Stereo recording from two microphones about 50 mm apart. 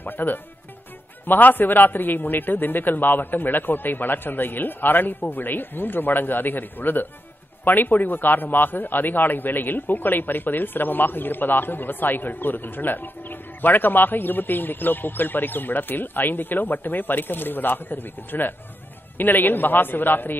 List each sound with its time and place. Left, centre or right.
0.0 s a man's voice: left